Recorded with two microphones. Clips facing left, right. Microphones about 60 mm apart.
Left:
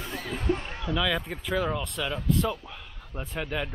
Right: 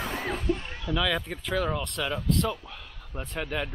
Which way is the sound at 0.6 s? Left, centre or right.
Centre.